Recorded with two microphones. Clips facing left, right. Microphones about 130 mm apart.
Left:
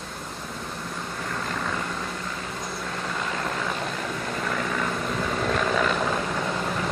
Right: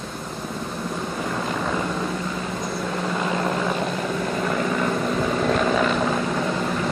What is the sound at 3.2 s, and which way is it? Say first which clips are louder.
Vehicle: right 6 dB; 20° right (ahead or behind).